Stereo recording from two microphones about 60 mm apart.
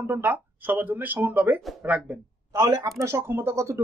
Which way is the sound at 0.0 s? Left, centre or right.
Right.